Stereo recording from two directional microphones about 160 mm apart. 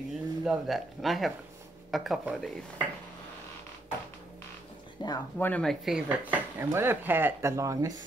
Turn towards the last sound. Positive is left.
turn(degrees=-20)  # may be behind; listen again after turning